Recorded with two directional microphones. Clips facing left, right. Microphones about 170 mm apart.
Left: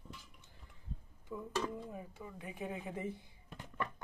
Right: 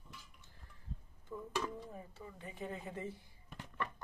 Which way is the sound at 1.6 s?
10° left (ahead or behind).